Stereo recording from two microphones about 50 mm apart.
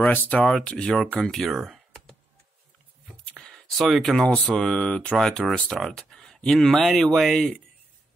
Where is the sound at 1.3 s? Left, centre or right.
Centre.